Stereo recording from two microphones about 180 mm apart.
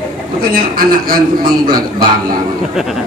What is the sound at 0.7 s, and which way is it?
A man's voice, 55° right (ahead or behind).